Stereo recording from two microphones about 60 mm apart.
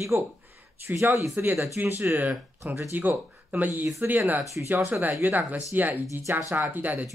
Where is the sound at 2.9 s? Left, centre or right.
Right.